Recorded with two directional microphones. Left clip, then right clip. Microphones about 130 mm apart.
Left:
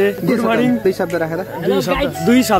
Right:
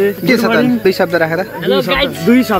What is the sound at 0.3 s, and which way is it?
Speech, 10° left (ahead or behind).